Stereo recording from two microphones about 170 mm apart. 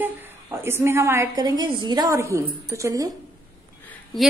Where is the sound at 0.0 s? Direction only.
15° right (ahead or behind).